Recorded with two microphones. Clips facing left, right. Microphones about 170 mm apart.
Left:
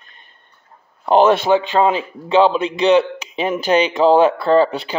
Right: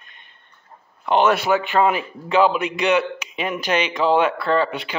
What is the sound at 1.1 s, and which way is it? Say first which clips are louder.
A man's voice: left 5 dB; 35° left (ahead or behind).